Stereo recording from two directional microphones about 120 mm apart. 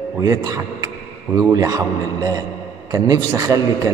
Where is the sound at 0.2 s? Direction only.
30° right (ahead or behind).